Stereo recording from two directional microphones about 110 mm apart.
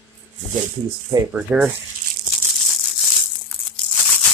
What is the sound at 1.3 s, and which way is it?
Speech, 10° right (ahead or behind).